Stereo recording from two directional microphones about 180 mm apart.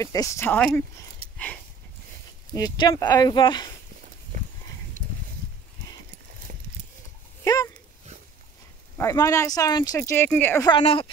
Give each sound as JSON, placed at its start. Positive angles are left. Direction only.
{"t": 0.0, "sound": "speech", "side_deg": 20}
{"t": 2.5, "sound": "speech", "side_deg": 20}
{"t": 6.5, "sound": "horse", "side_deg": -40}
{"t": 7.4, "sound": "dog", "side_deg": 20}
{"t": 8.9, "sound": "speech", "side_deg": 15}
{"t": 10.7, "sound": "speech", "side_deg": 30}